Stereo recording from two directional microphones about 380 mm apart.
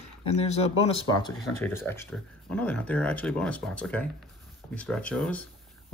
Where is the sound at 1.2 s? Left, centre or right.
Centre.